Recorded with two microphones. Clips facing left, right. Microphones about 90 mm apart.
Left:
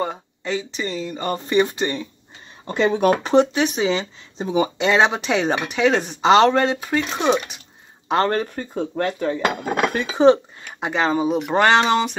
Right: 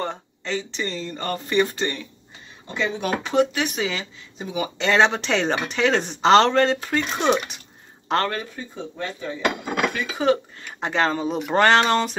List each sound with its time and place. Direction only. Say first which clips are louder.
0.0 s speech: left 3 dB; 10° left (ahead or behind)
2.7 s speech: left 7 dB; 45° left (ahead or behind)
3.3 s speech: left 4 dB; 20° left (ahead or behind)
4.7 s speech: right 2 dB; 15° left (ahead or behind)
8.5 s cutlery: left 8 dB; 60° left (ahead or behind)
9.7 s speech: left 3 dB; 40° left (ahead or behind)
10.0 s speech: left 9 dB; 30° left (ahead or behind)
10.6 s speech: left 1 dB; 5° left (ahead or behind)